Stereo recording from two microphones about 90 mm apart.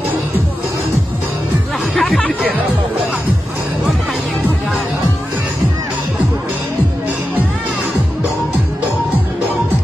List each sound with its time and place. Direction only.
2.0 s music: centre (ahead or behind)